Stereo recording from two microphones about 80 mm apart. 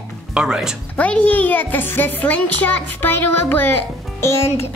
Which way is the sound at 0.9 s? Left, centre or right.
Centre.